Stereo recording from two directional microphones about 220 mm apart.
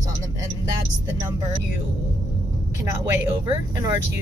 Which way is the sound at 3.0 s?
15° right (ahead or behind).